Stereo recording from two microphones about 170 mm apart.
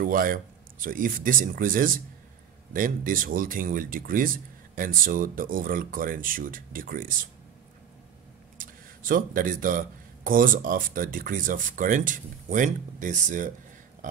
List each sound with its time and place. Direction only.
0.0 s speech: 55° right (ahead or behind)
8.5 s speech: 55° right (ahead or behind)